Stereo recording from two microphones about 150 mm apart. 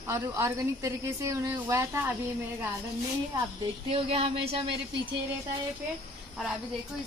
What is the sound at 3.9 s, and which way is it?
Speech, 40° right (ahead or behind).